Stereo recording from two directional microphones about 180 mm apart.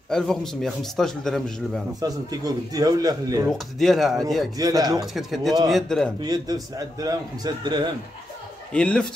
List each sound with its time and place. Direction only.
0.1 s a man's voice: 5° left (ahead or behind)
2.0 s a man's voice: 20° right (ahead or behind)
3.4 s a man's voice: centre (ahead or behind)
4.6 s a man's voice: 20° right (ahead or behind)
5.0 s a man's voice: centre (ahead or behind)
6.2 s a man's voice: 20° right (ahead or behind)
8.7 s a man's voice: 5° left (ahead or behind)